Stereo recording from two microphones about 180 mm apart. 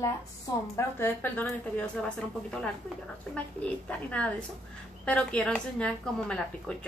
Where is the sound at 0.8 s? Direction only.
10° left (ahead or behind).